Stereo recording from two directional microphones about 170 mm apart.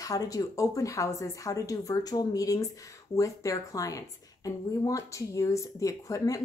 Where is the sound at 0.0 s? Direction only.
20° left (ahead or behind).